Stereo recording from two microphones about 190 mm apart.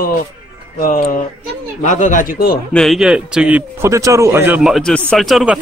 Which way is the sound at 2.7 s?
Centre (ahead or behind).